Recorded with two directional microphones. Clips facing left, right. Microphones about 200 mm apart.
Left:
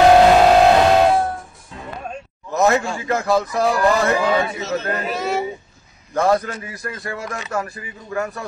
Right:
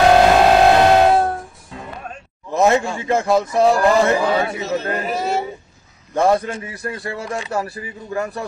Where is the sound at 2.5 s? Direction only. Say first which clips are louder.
Right 1 dB; 25° right (ahead or behind).